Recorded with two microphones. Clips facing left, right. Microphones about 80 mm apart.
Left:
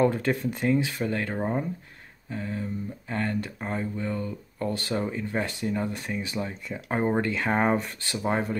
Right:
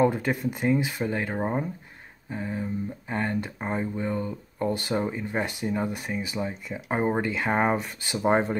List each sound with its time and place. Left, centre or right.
0.0 s speech: centre
8.0 s speech: centre